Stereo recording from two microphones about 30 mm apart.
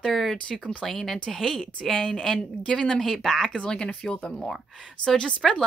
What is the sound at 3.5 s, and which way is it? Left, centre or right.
Speech, left.